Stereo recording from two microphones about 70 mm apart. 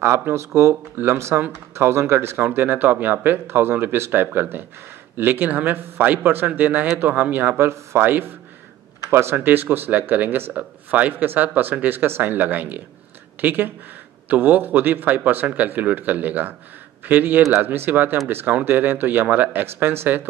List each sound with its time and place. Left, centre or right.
0.0 s speech: right